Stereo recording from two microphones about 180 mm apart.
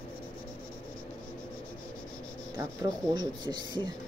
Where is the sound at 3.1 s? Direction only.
25° right (ahead or behind).